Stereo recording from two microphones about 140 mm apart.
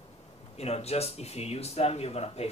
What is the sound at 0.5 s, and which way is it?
Speech, 50° left (ahead or behind).